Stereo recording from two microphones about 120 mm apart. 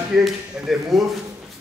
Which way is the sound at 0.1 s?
Centre (ahead or behind).